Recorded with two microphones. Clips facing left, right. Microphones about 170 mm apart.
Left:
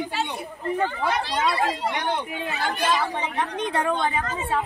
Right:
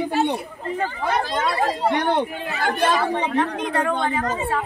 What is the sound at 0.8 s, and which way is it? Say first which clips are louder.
Speech: right 2 dB; 40° right (ahead or behind).